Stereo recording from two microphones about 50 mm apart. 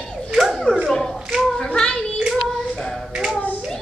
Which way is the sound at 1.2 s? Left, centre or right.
Centre.